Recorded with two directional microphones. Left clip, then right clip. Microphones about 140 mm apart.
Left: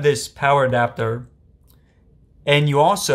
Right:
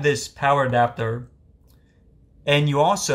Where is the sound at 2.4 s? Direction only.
30° left (ahead or behind).